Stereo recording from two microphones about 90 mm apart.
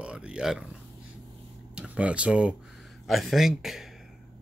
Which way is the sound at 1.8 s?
15° right (ahead or behind).